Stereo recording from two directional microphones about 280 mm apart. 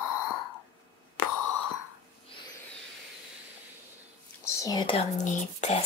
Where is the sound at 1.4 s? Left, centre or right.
Left.